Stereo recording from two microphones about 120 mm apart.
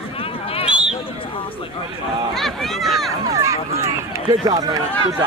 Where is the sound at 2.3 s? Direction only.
Centre (ahead or behind).